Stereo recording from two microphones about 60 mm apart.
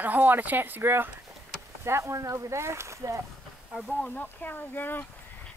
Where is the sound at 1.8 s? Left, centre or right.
Right.